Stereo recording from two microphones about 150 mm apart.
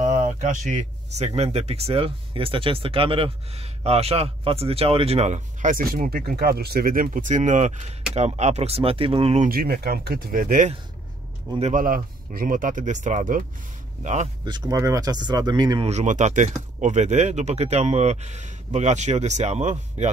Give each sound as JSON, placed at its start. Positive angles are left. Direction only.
{"t": 0.0, "sound": "speech", "side_deg": -55}
{"t": 9.5, "sound": "speech", "side_deg": -90}
{"t": 14.0, "sound": "speech", "side_deg": -50}
{"t": 14.4, "sound": "speech", "side_deg": -25}
{"t": 15.9, "sound": "speech", "side_deg": -50}